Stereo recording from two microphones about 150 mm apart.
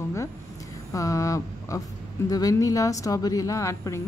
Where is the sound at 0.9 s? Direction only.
20° left (ahead or behind).